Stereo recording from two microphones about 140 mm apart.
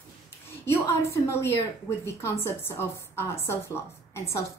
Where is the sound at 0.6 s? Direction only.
20° left (ahead or behind).